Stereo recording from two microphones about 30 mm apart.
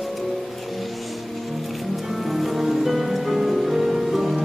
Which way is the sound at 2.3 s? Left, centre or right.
Centre.